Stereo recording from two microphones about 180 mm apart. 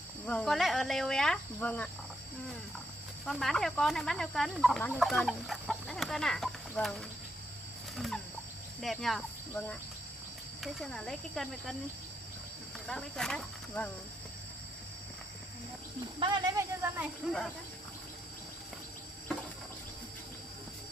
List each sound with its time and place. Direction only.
0.3 s speech: centre (ahead or behind)
3.3 s speech: centre (ahead or behind)
7.9 s chicken: centre (ahead or behind)
8.8 s speech: centre (ahead or behind)
9.5 s cricket: 10° left (ahead or behind)
10.6 s speech: centre (ahead or behind)
12.8 s speech: 5° left (ahead or behind)
16.2 s speech: 25° right (ahead or behind)